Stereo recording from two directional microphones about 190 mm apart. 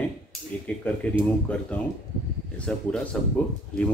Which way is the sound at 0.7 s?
10° left (ahead or behind).